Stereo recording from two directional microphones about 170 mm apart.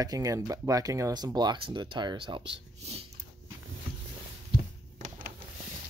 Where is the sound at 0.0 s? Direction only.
20° right (ahead or behind).